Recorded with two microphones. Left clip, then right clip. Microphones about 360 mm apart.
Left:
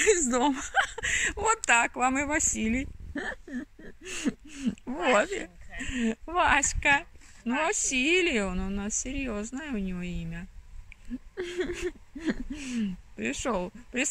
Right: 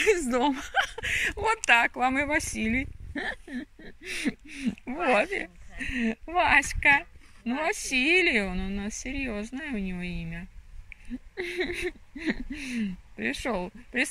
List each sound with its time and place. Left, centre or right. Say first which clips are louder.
0.0 s a woman's voice: even; centre
11.4 s speech: right 2 dB; centre